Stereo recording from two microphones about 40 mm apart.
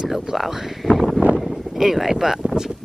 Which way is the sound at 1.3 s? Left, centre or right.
Centre.